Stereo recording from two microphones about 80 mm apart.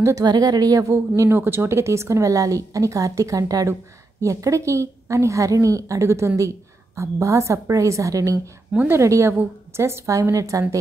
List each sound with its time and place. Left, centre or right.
0.2 s a woman's voice: right
8.7 s speech: right
9.0 s a woman's voice: right